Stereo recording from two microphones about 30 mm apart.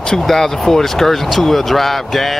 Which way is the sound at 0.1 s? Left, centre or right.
Centre.